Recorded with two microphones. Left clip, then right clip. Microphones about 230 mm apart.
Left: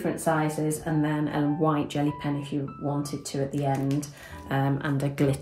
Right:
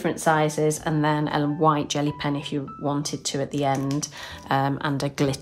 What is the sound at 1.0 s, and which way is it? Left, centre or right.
Speech, centre.